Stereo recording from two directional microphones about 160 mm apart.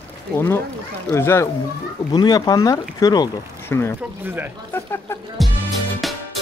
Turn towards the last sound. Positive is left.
turn(degrees=0)  # may be behind; listen again after turning